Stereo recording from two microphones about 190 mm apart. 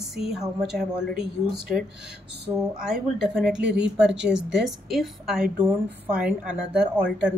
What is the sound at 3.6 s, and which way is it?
Speech, 65° right (ahead or behind).